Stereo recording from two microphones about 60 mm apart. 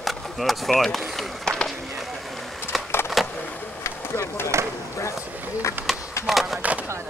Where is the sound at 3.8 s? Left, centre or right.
Left.